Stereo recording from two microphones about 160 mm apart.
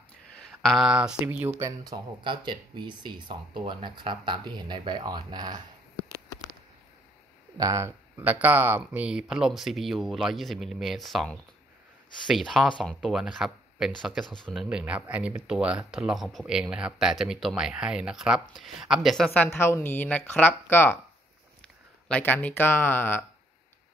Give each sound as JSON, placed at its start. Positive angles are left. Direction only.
{"t": 0.6, "sound": "speech", "side_deg": 0}
{"t": 1.9, "sound": "speech", "side_deg": -30}
{"t": 7.5, "sound": "speech", "side_deg": -20}
{"t": 8.2, "sound": "speech", "side_deg": -10}
{"t": 19.3, "sound": "a woman's voice", "side_deg": 15}
{"t": 22.0, "sound": "a woman's voice", "side_deg": 10}